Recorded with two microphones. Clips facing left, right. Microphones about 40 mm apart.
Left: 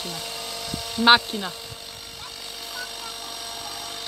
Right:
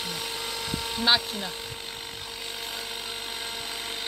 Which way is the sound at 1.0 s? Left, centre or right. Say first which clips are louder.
Left 8 dB; left.